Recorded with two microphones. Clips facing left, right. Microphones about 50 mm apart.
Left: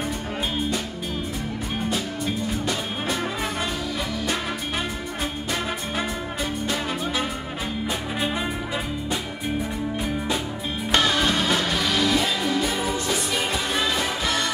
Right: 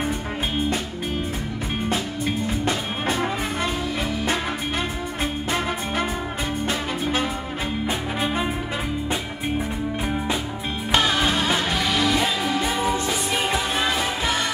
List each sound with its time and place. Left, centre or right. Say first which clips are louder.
2.6 s music: right 2 dB; right
6.6 s music: right 2 dB; right
10.9 s music: right 1 dB; centre